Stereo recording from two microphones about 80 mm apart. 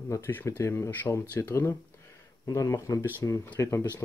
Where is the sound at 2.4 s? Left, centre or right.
Left.